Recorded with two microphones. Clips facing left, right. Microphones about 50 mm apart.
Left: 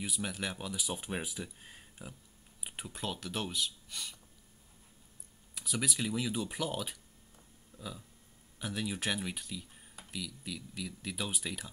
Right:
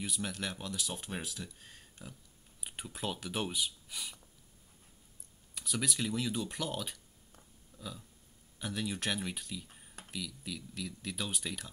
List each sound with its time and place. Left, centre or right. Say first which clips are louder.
0.0 s speech: left 1 dB; centre
5.5 s speech: even; centre
7.7 s a sound: left 1 dB; left
8.5 s speech: even; centre